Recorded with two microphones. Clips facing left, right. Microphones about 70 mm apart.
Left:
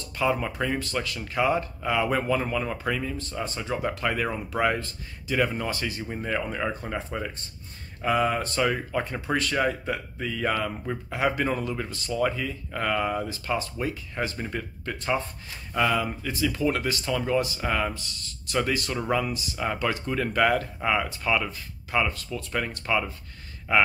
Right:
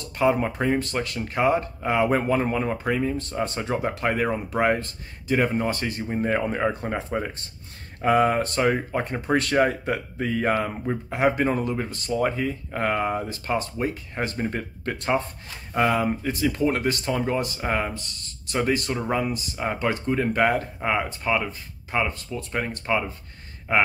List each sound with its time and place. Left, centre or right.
0.2 s speech: right
3.2 s speech: right
17.6 s speech: right